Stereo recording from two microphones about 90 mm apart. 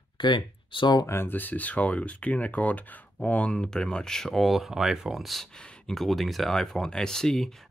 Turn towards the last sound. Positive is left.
turn(degrees=5)  # may be behind; listen again after turning